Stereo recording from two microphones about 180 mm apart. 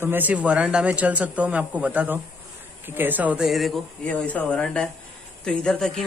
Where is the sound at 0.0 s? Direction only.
10° right (ahead or behind).